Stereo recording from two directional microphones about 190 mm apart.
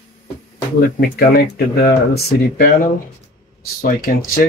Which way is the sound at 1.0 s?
50° left (ahead or behind).